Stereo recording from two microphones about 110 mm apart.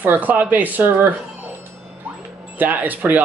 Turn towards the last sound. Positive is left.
turn(degrees=-15)  # may be behind; listen again after turning